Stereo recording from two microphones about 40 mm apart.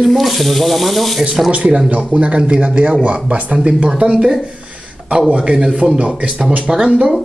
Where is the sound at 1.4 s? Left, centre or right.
Right.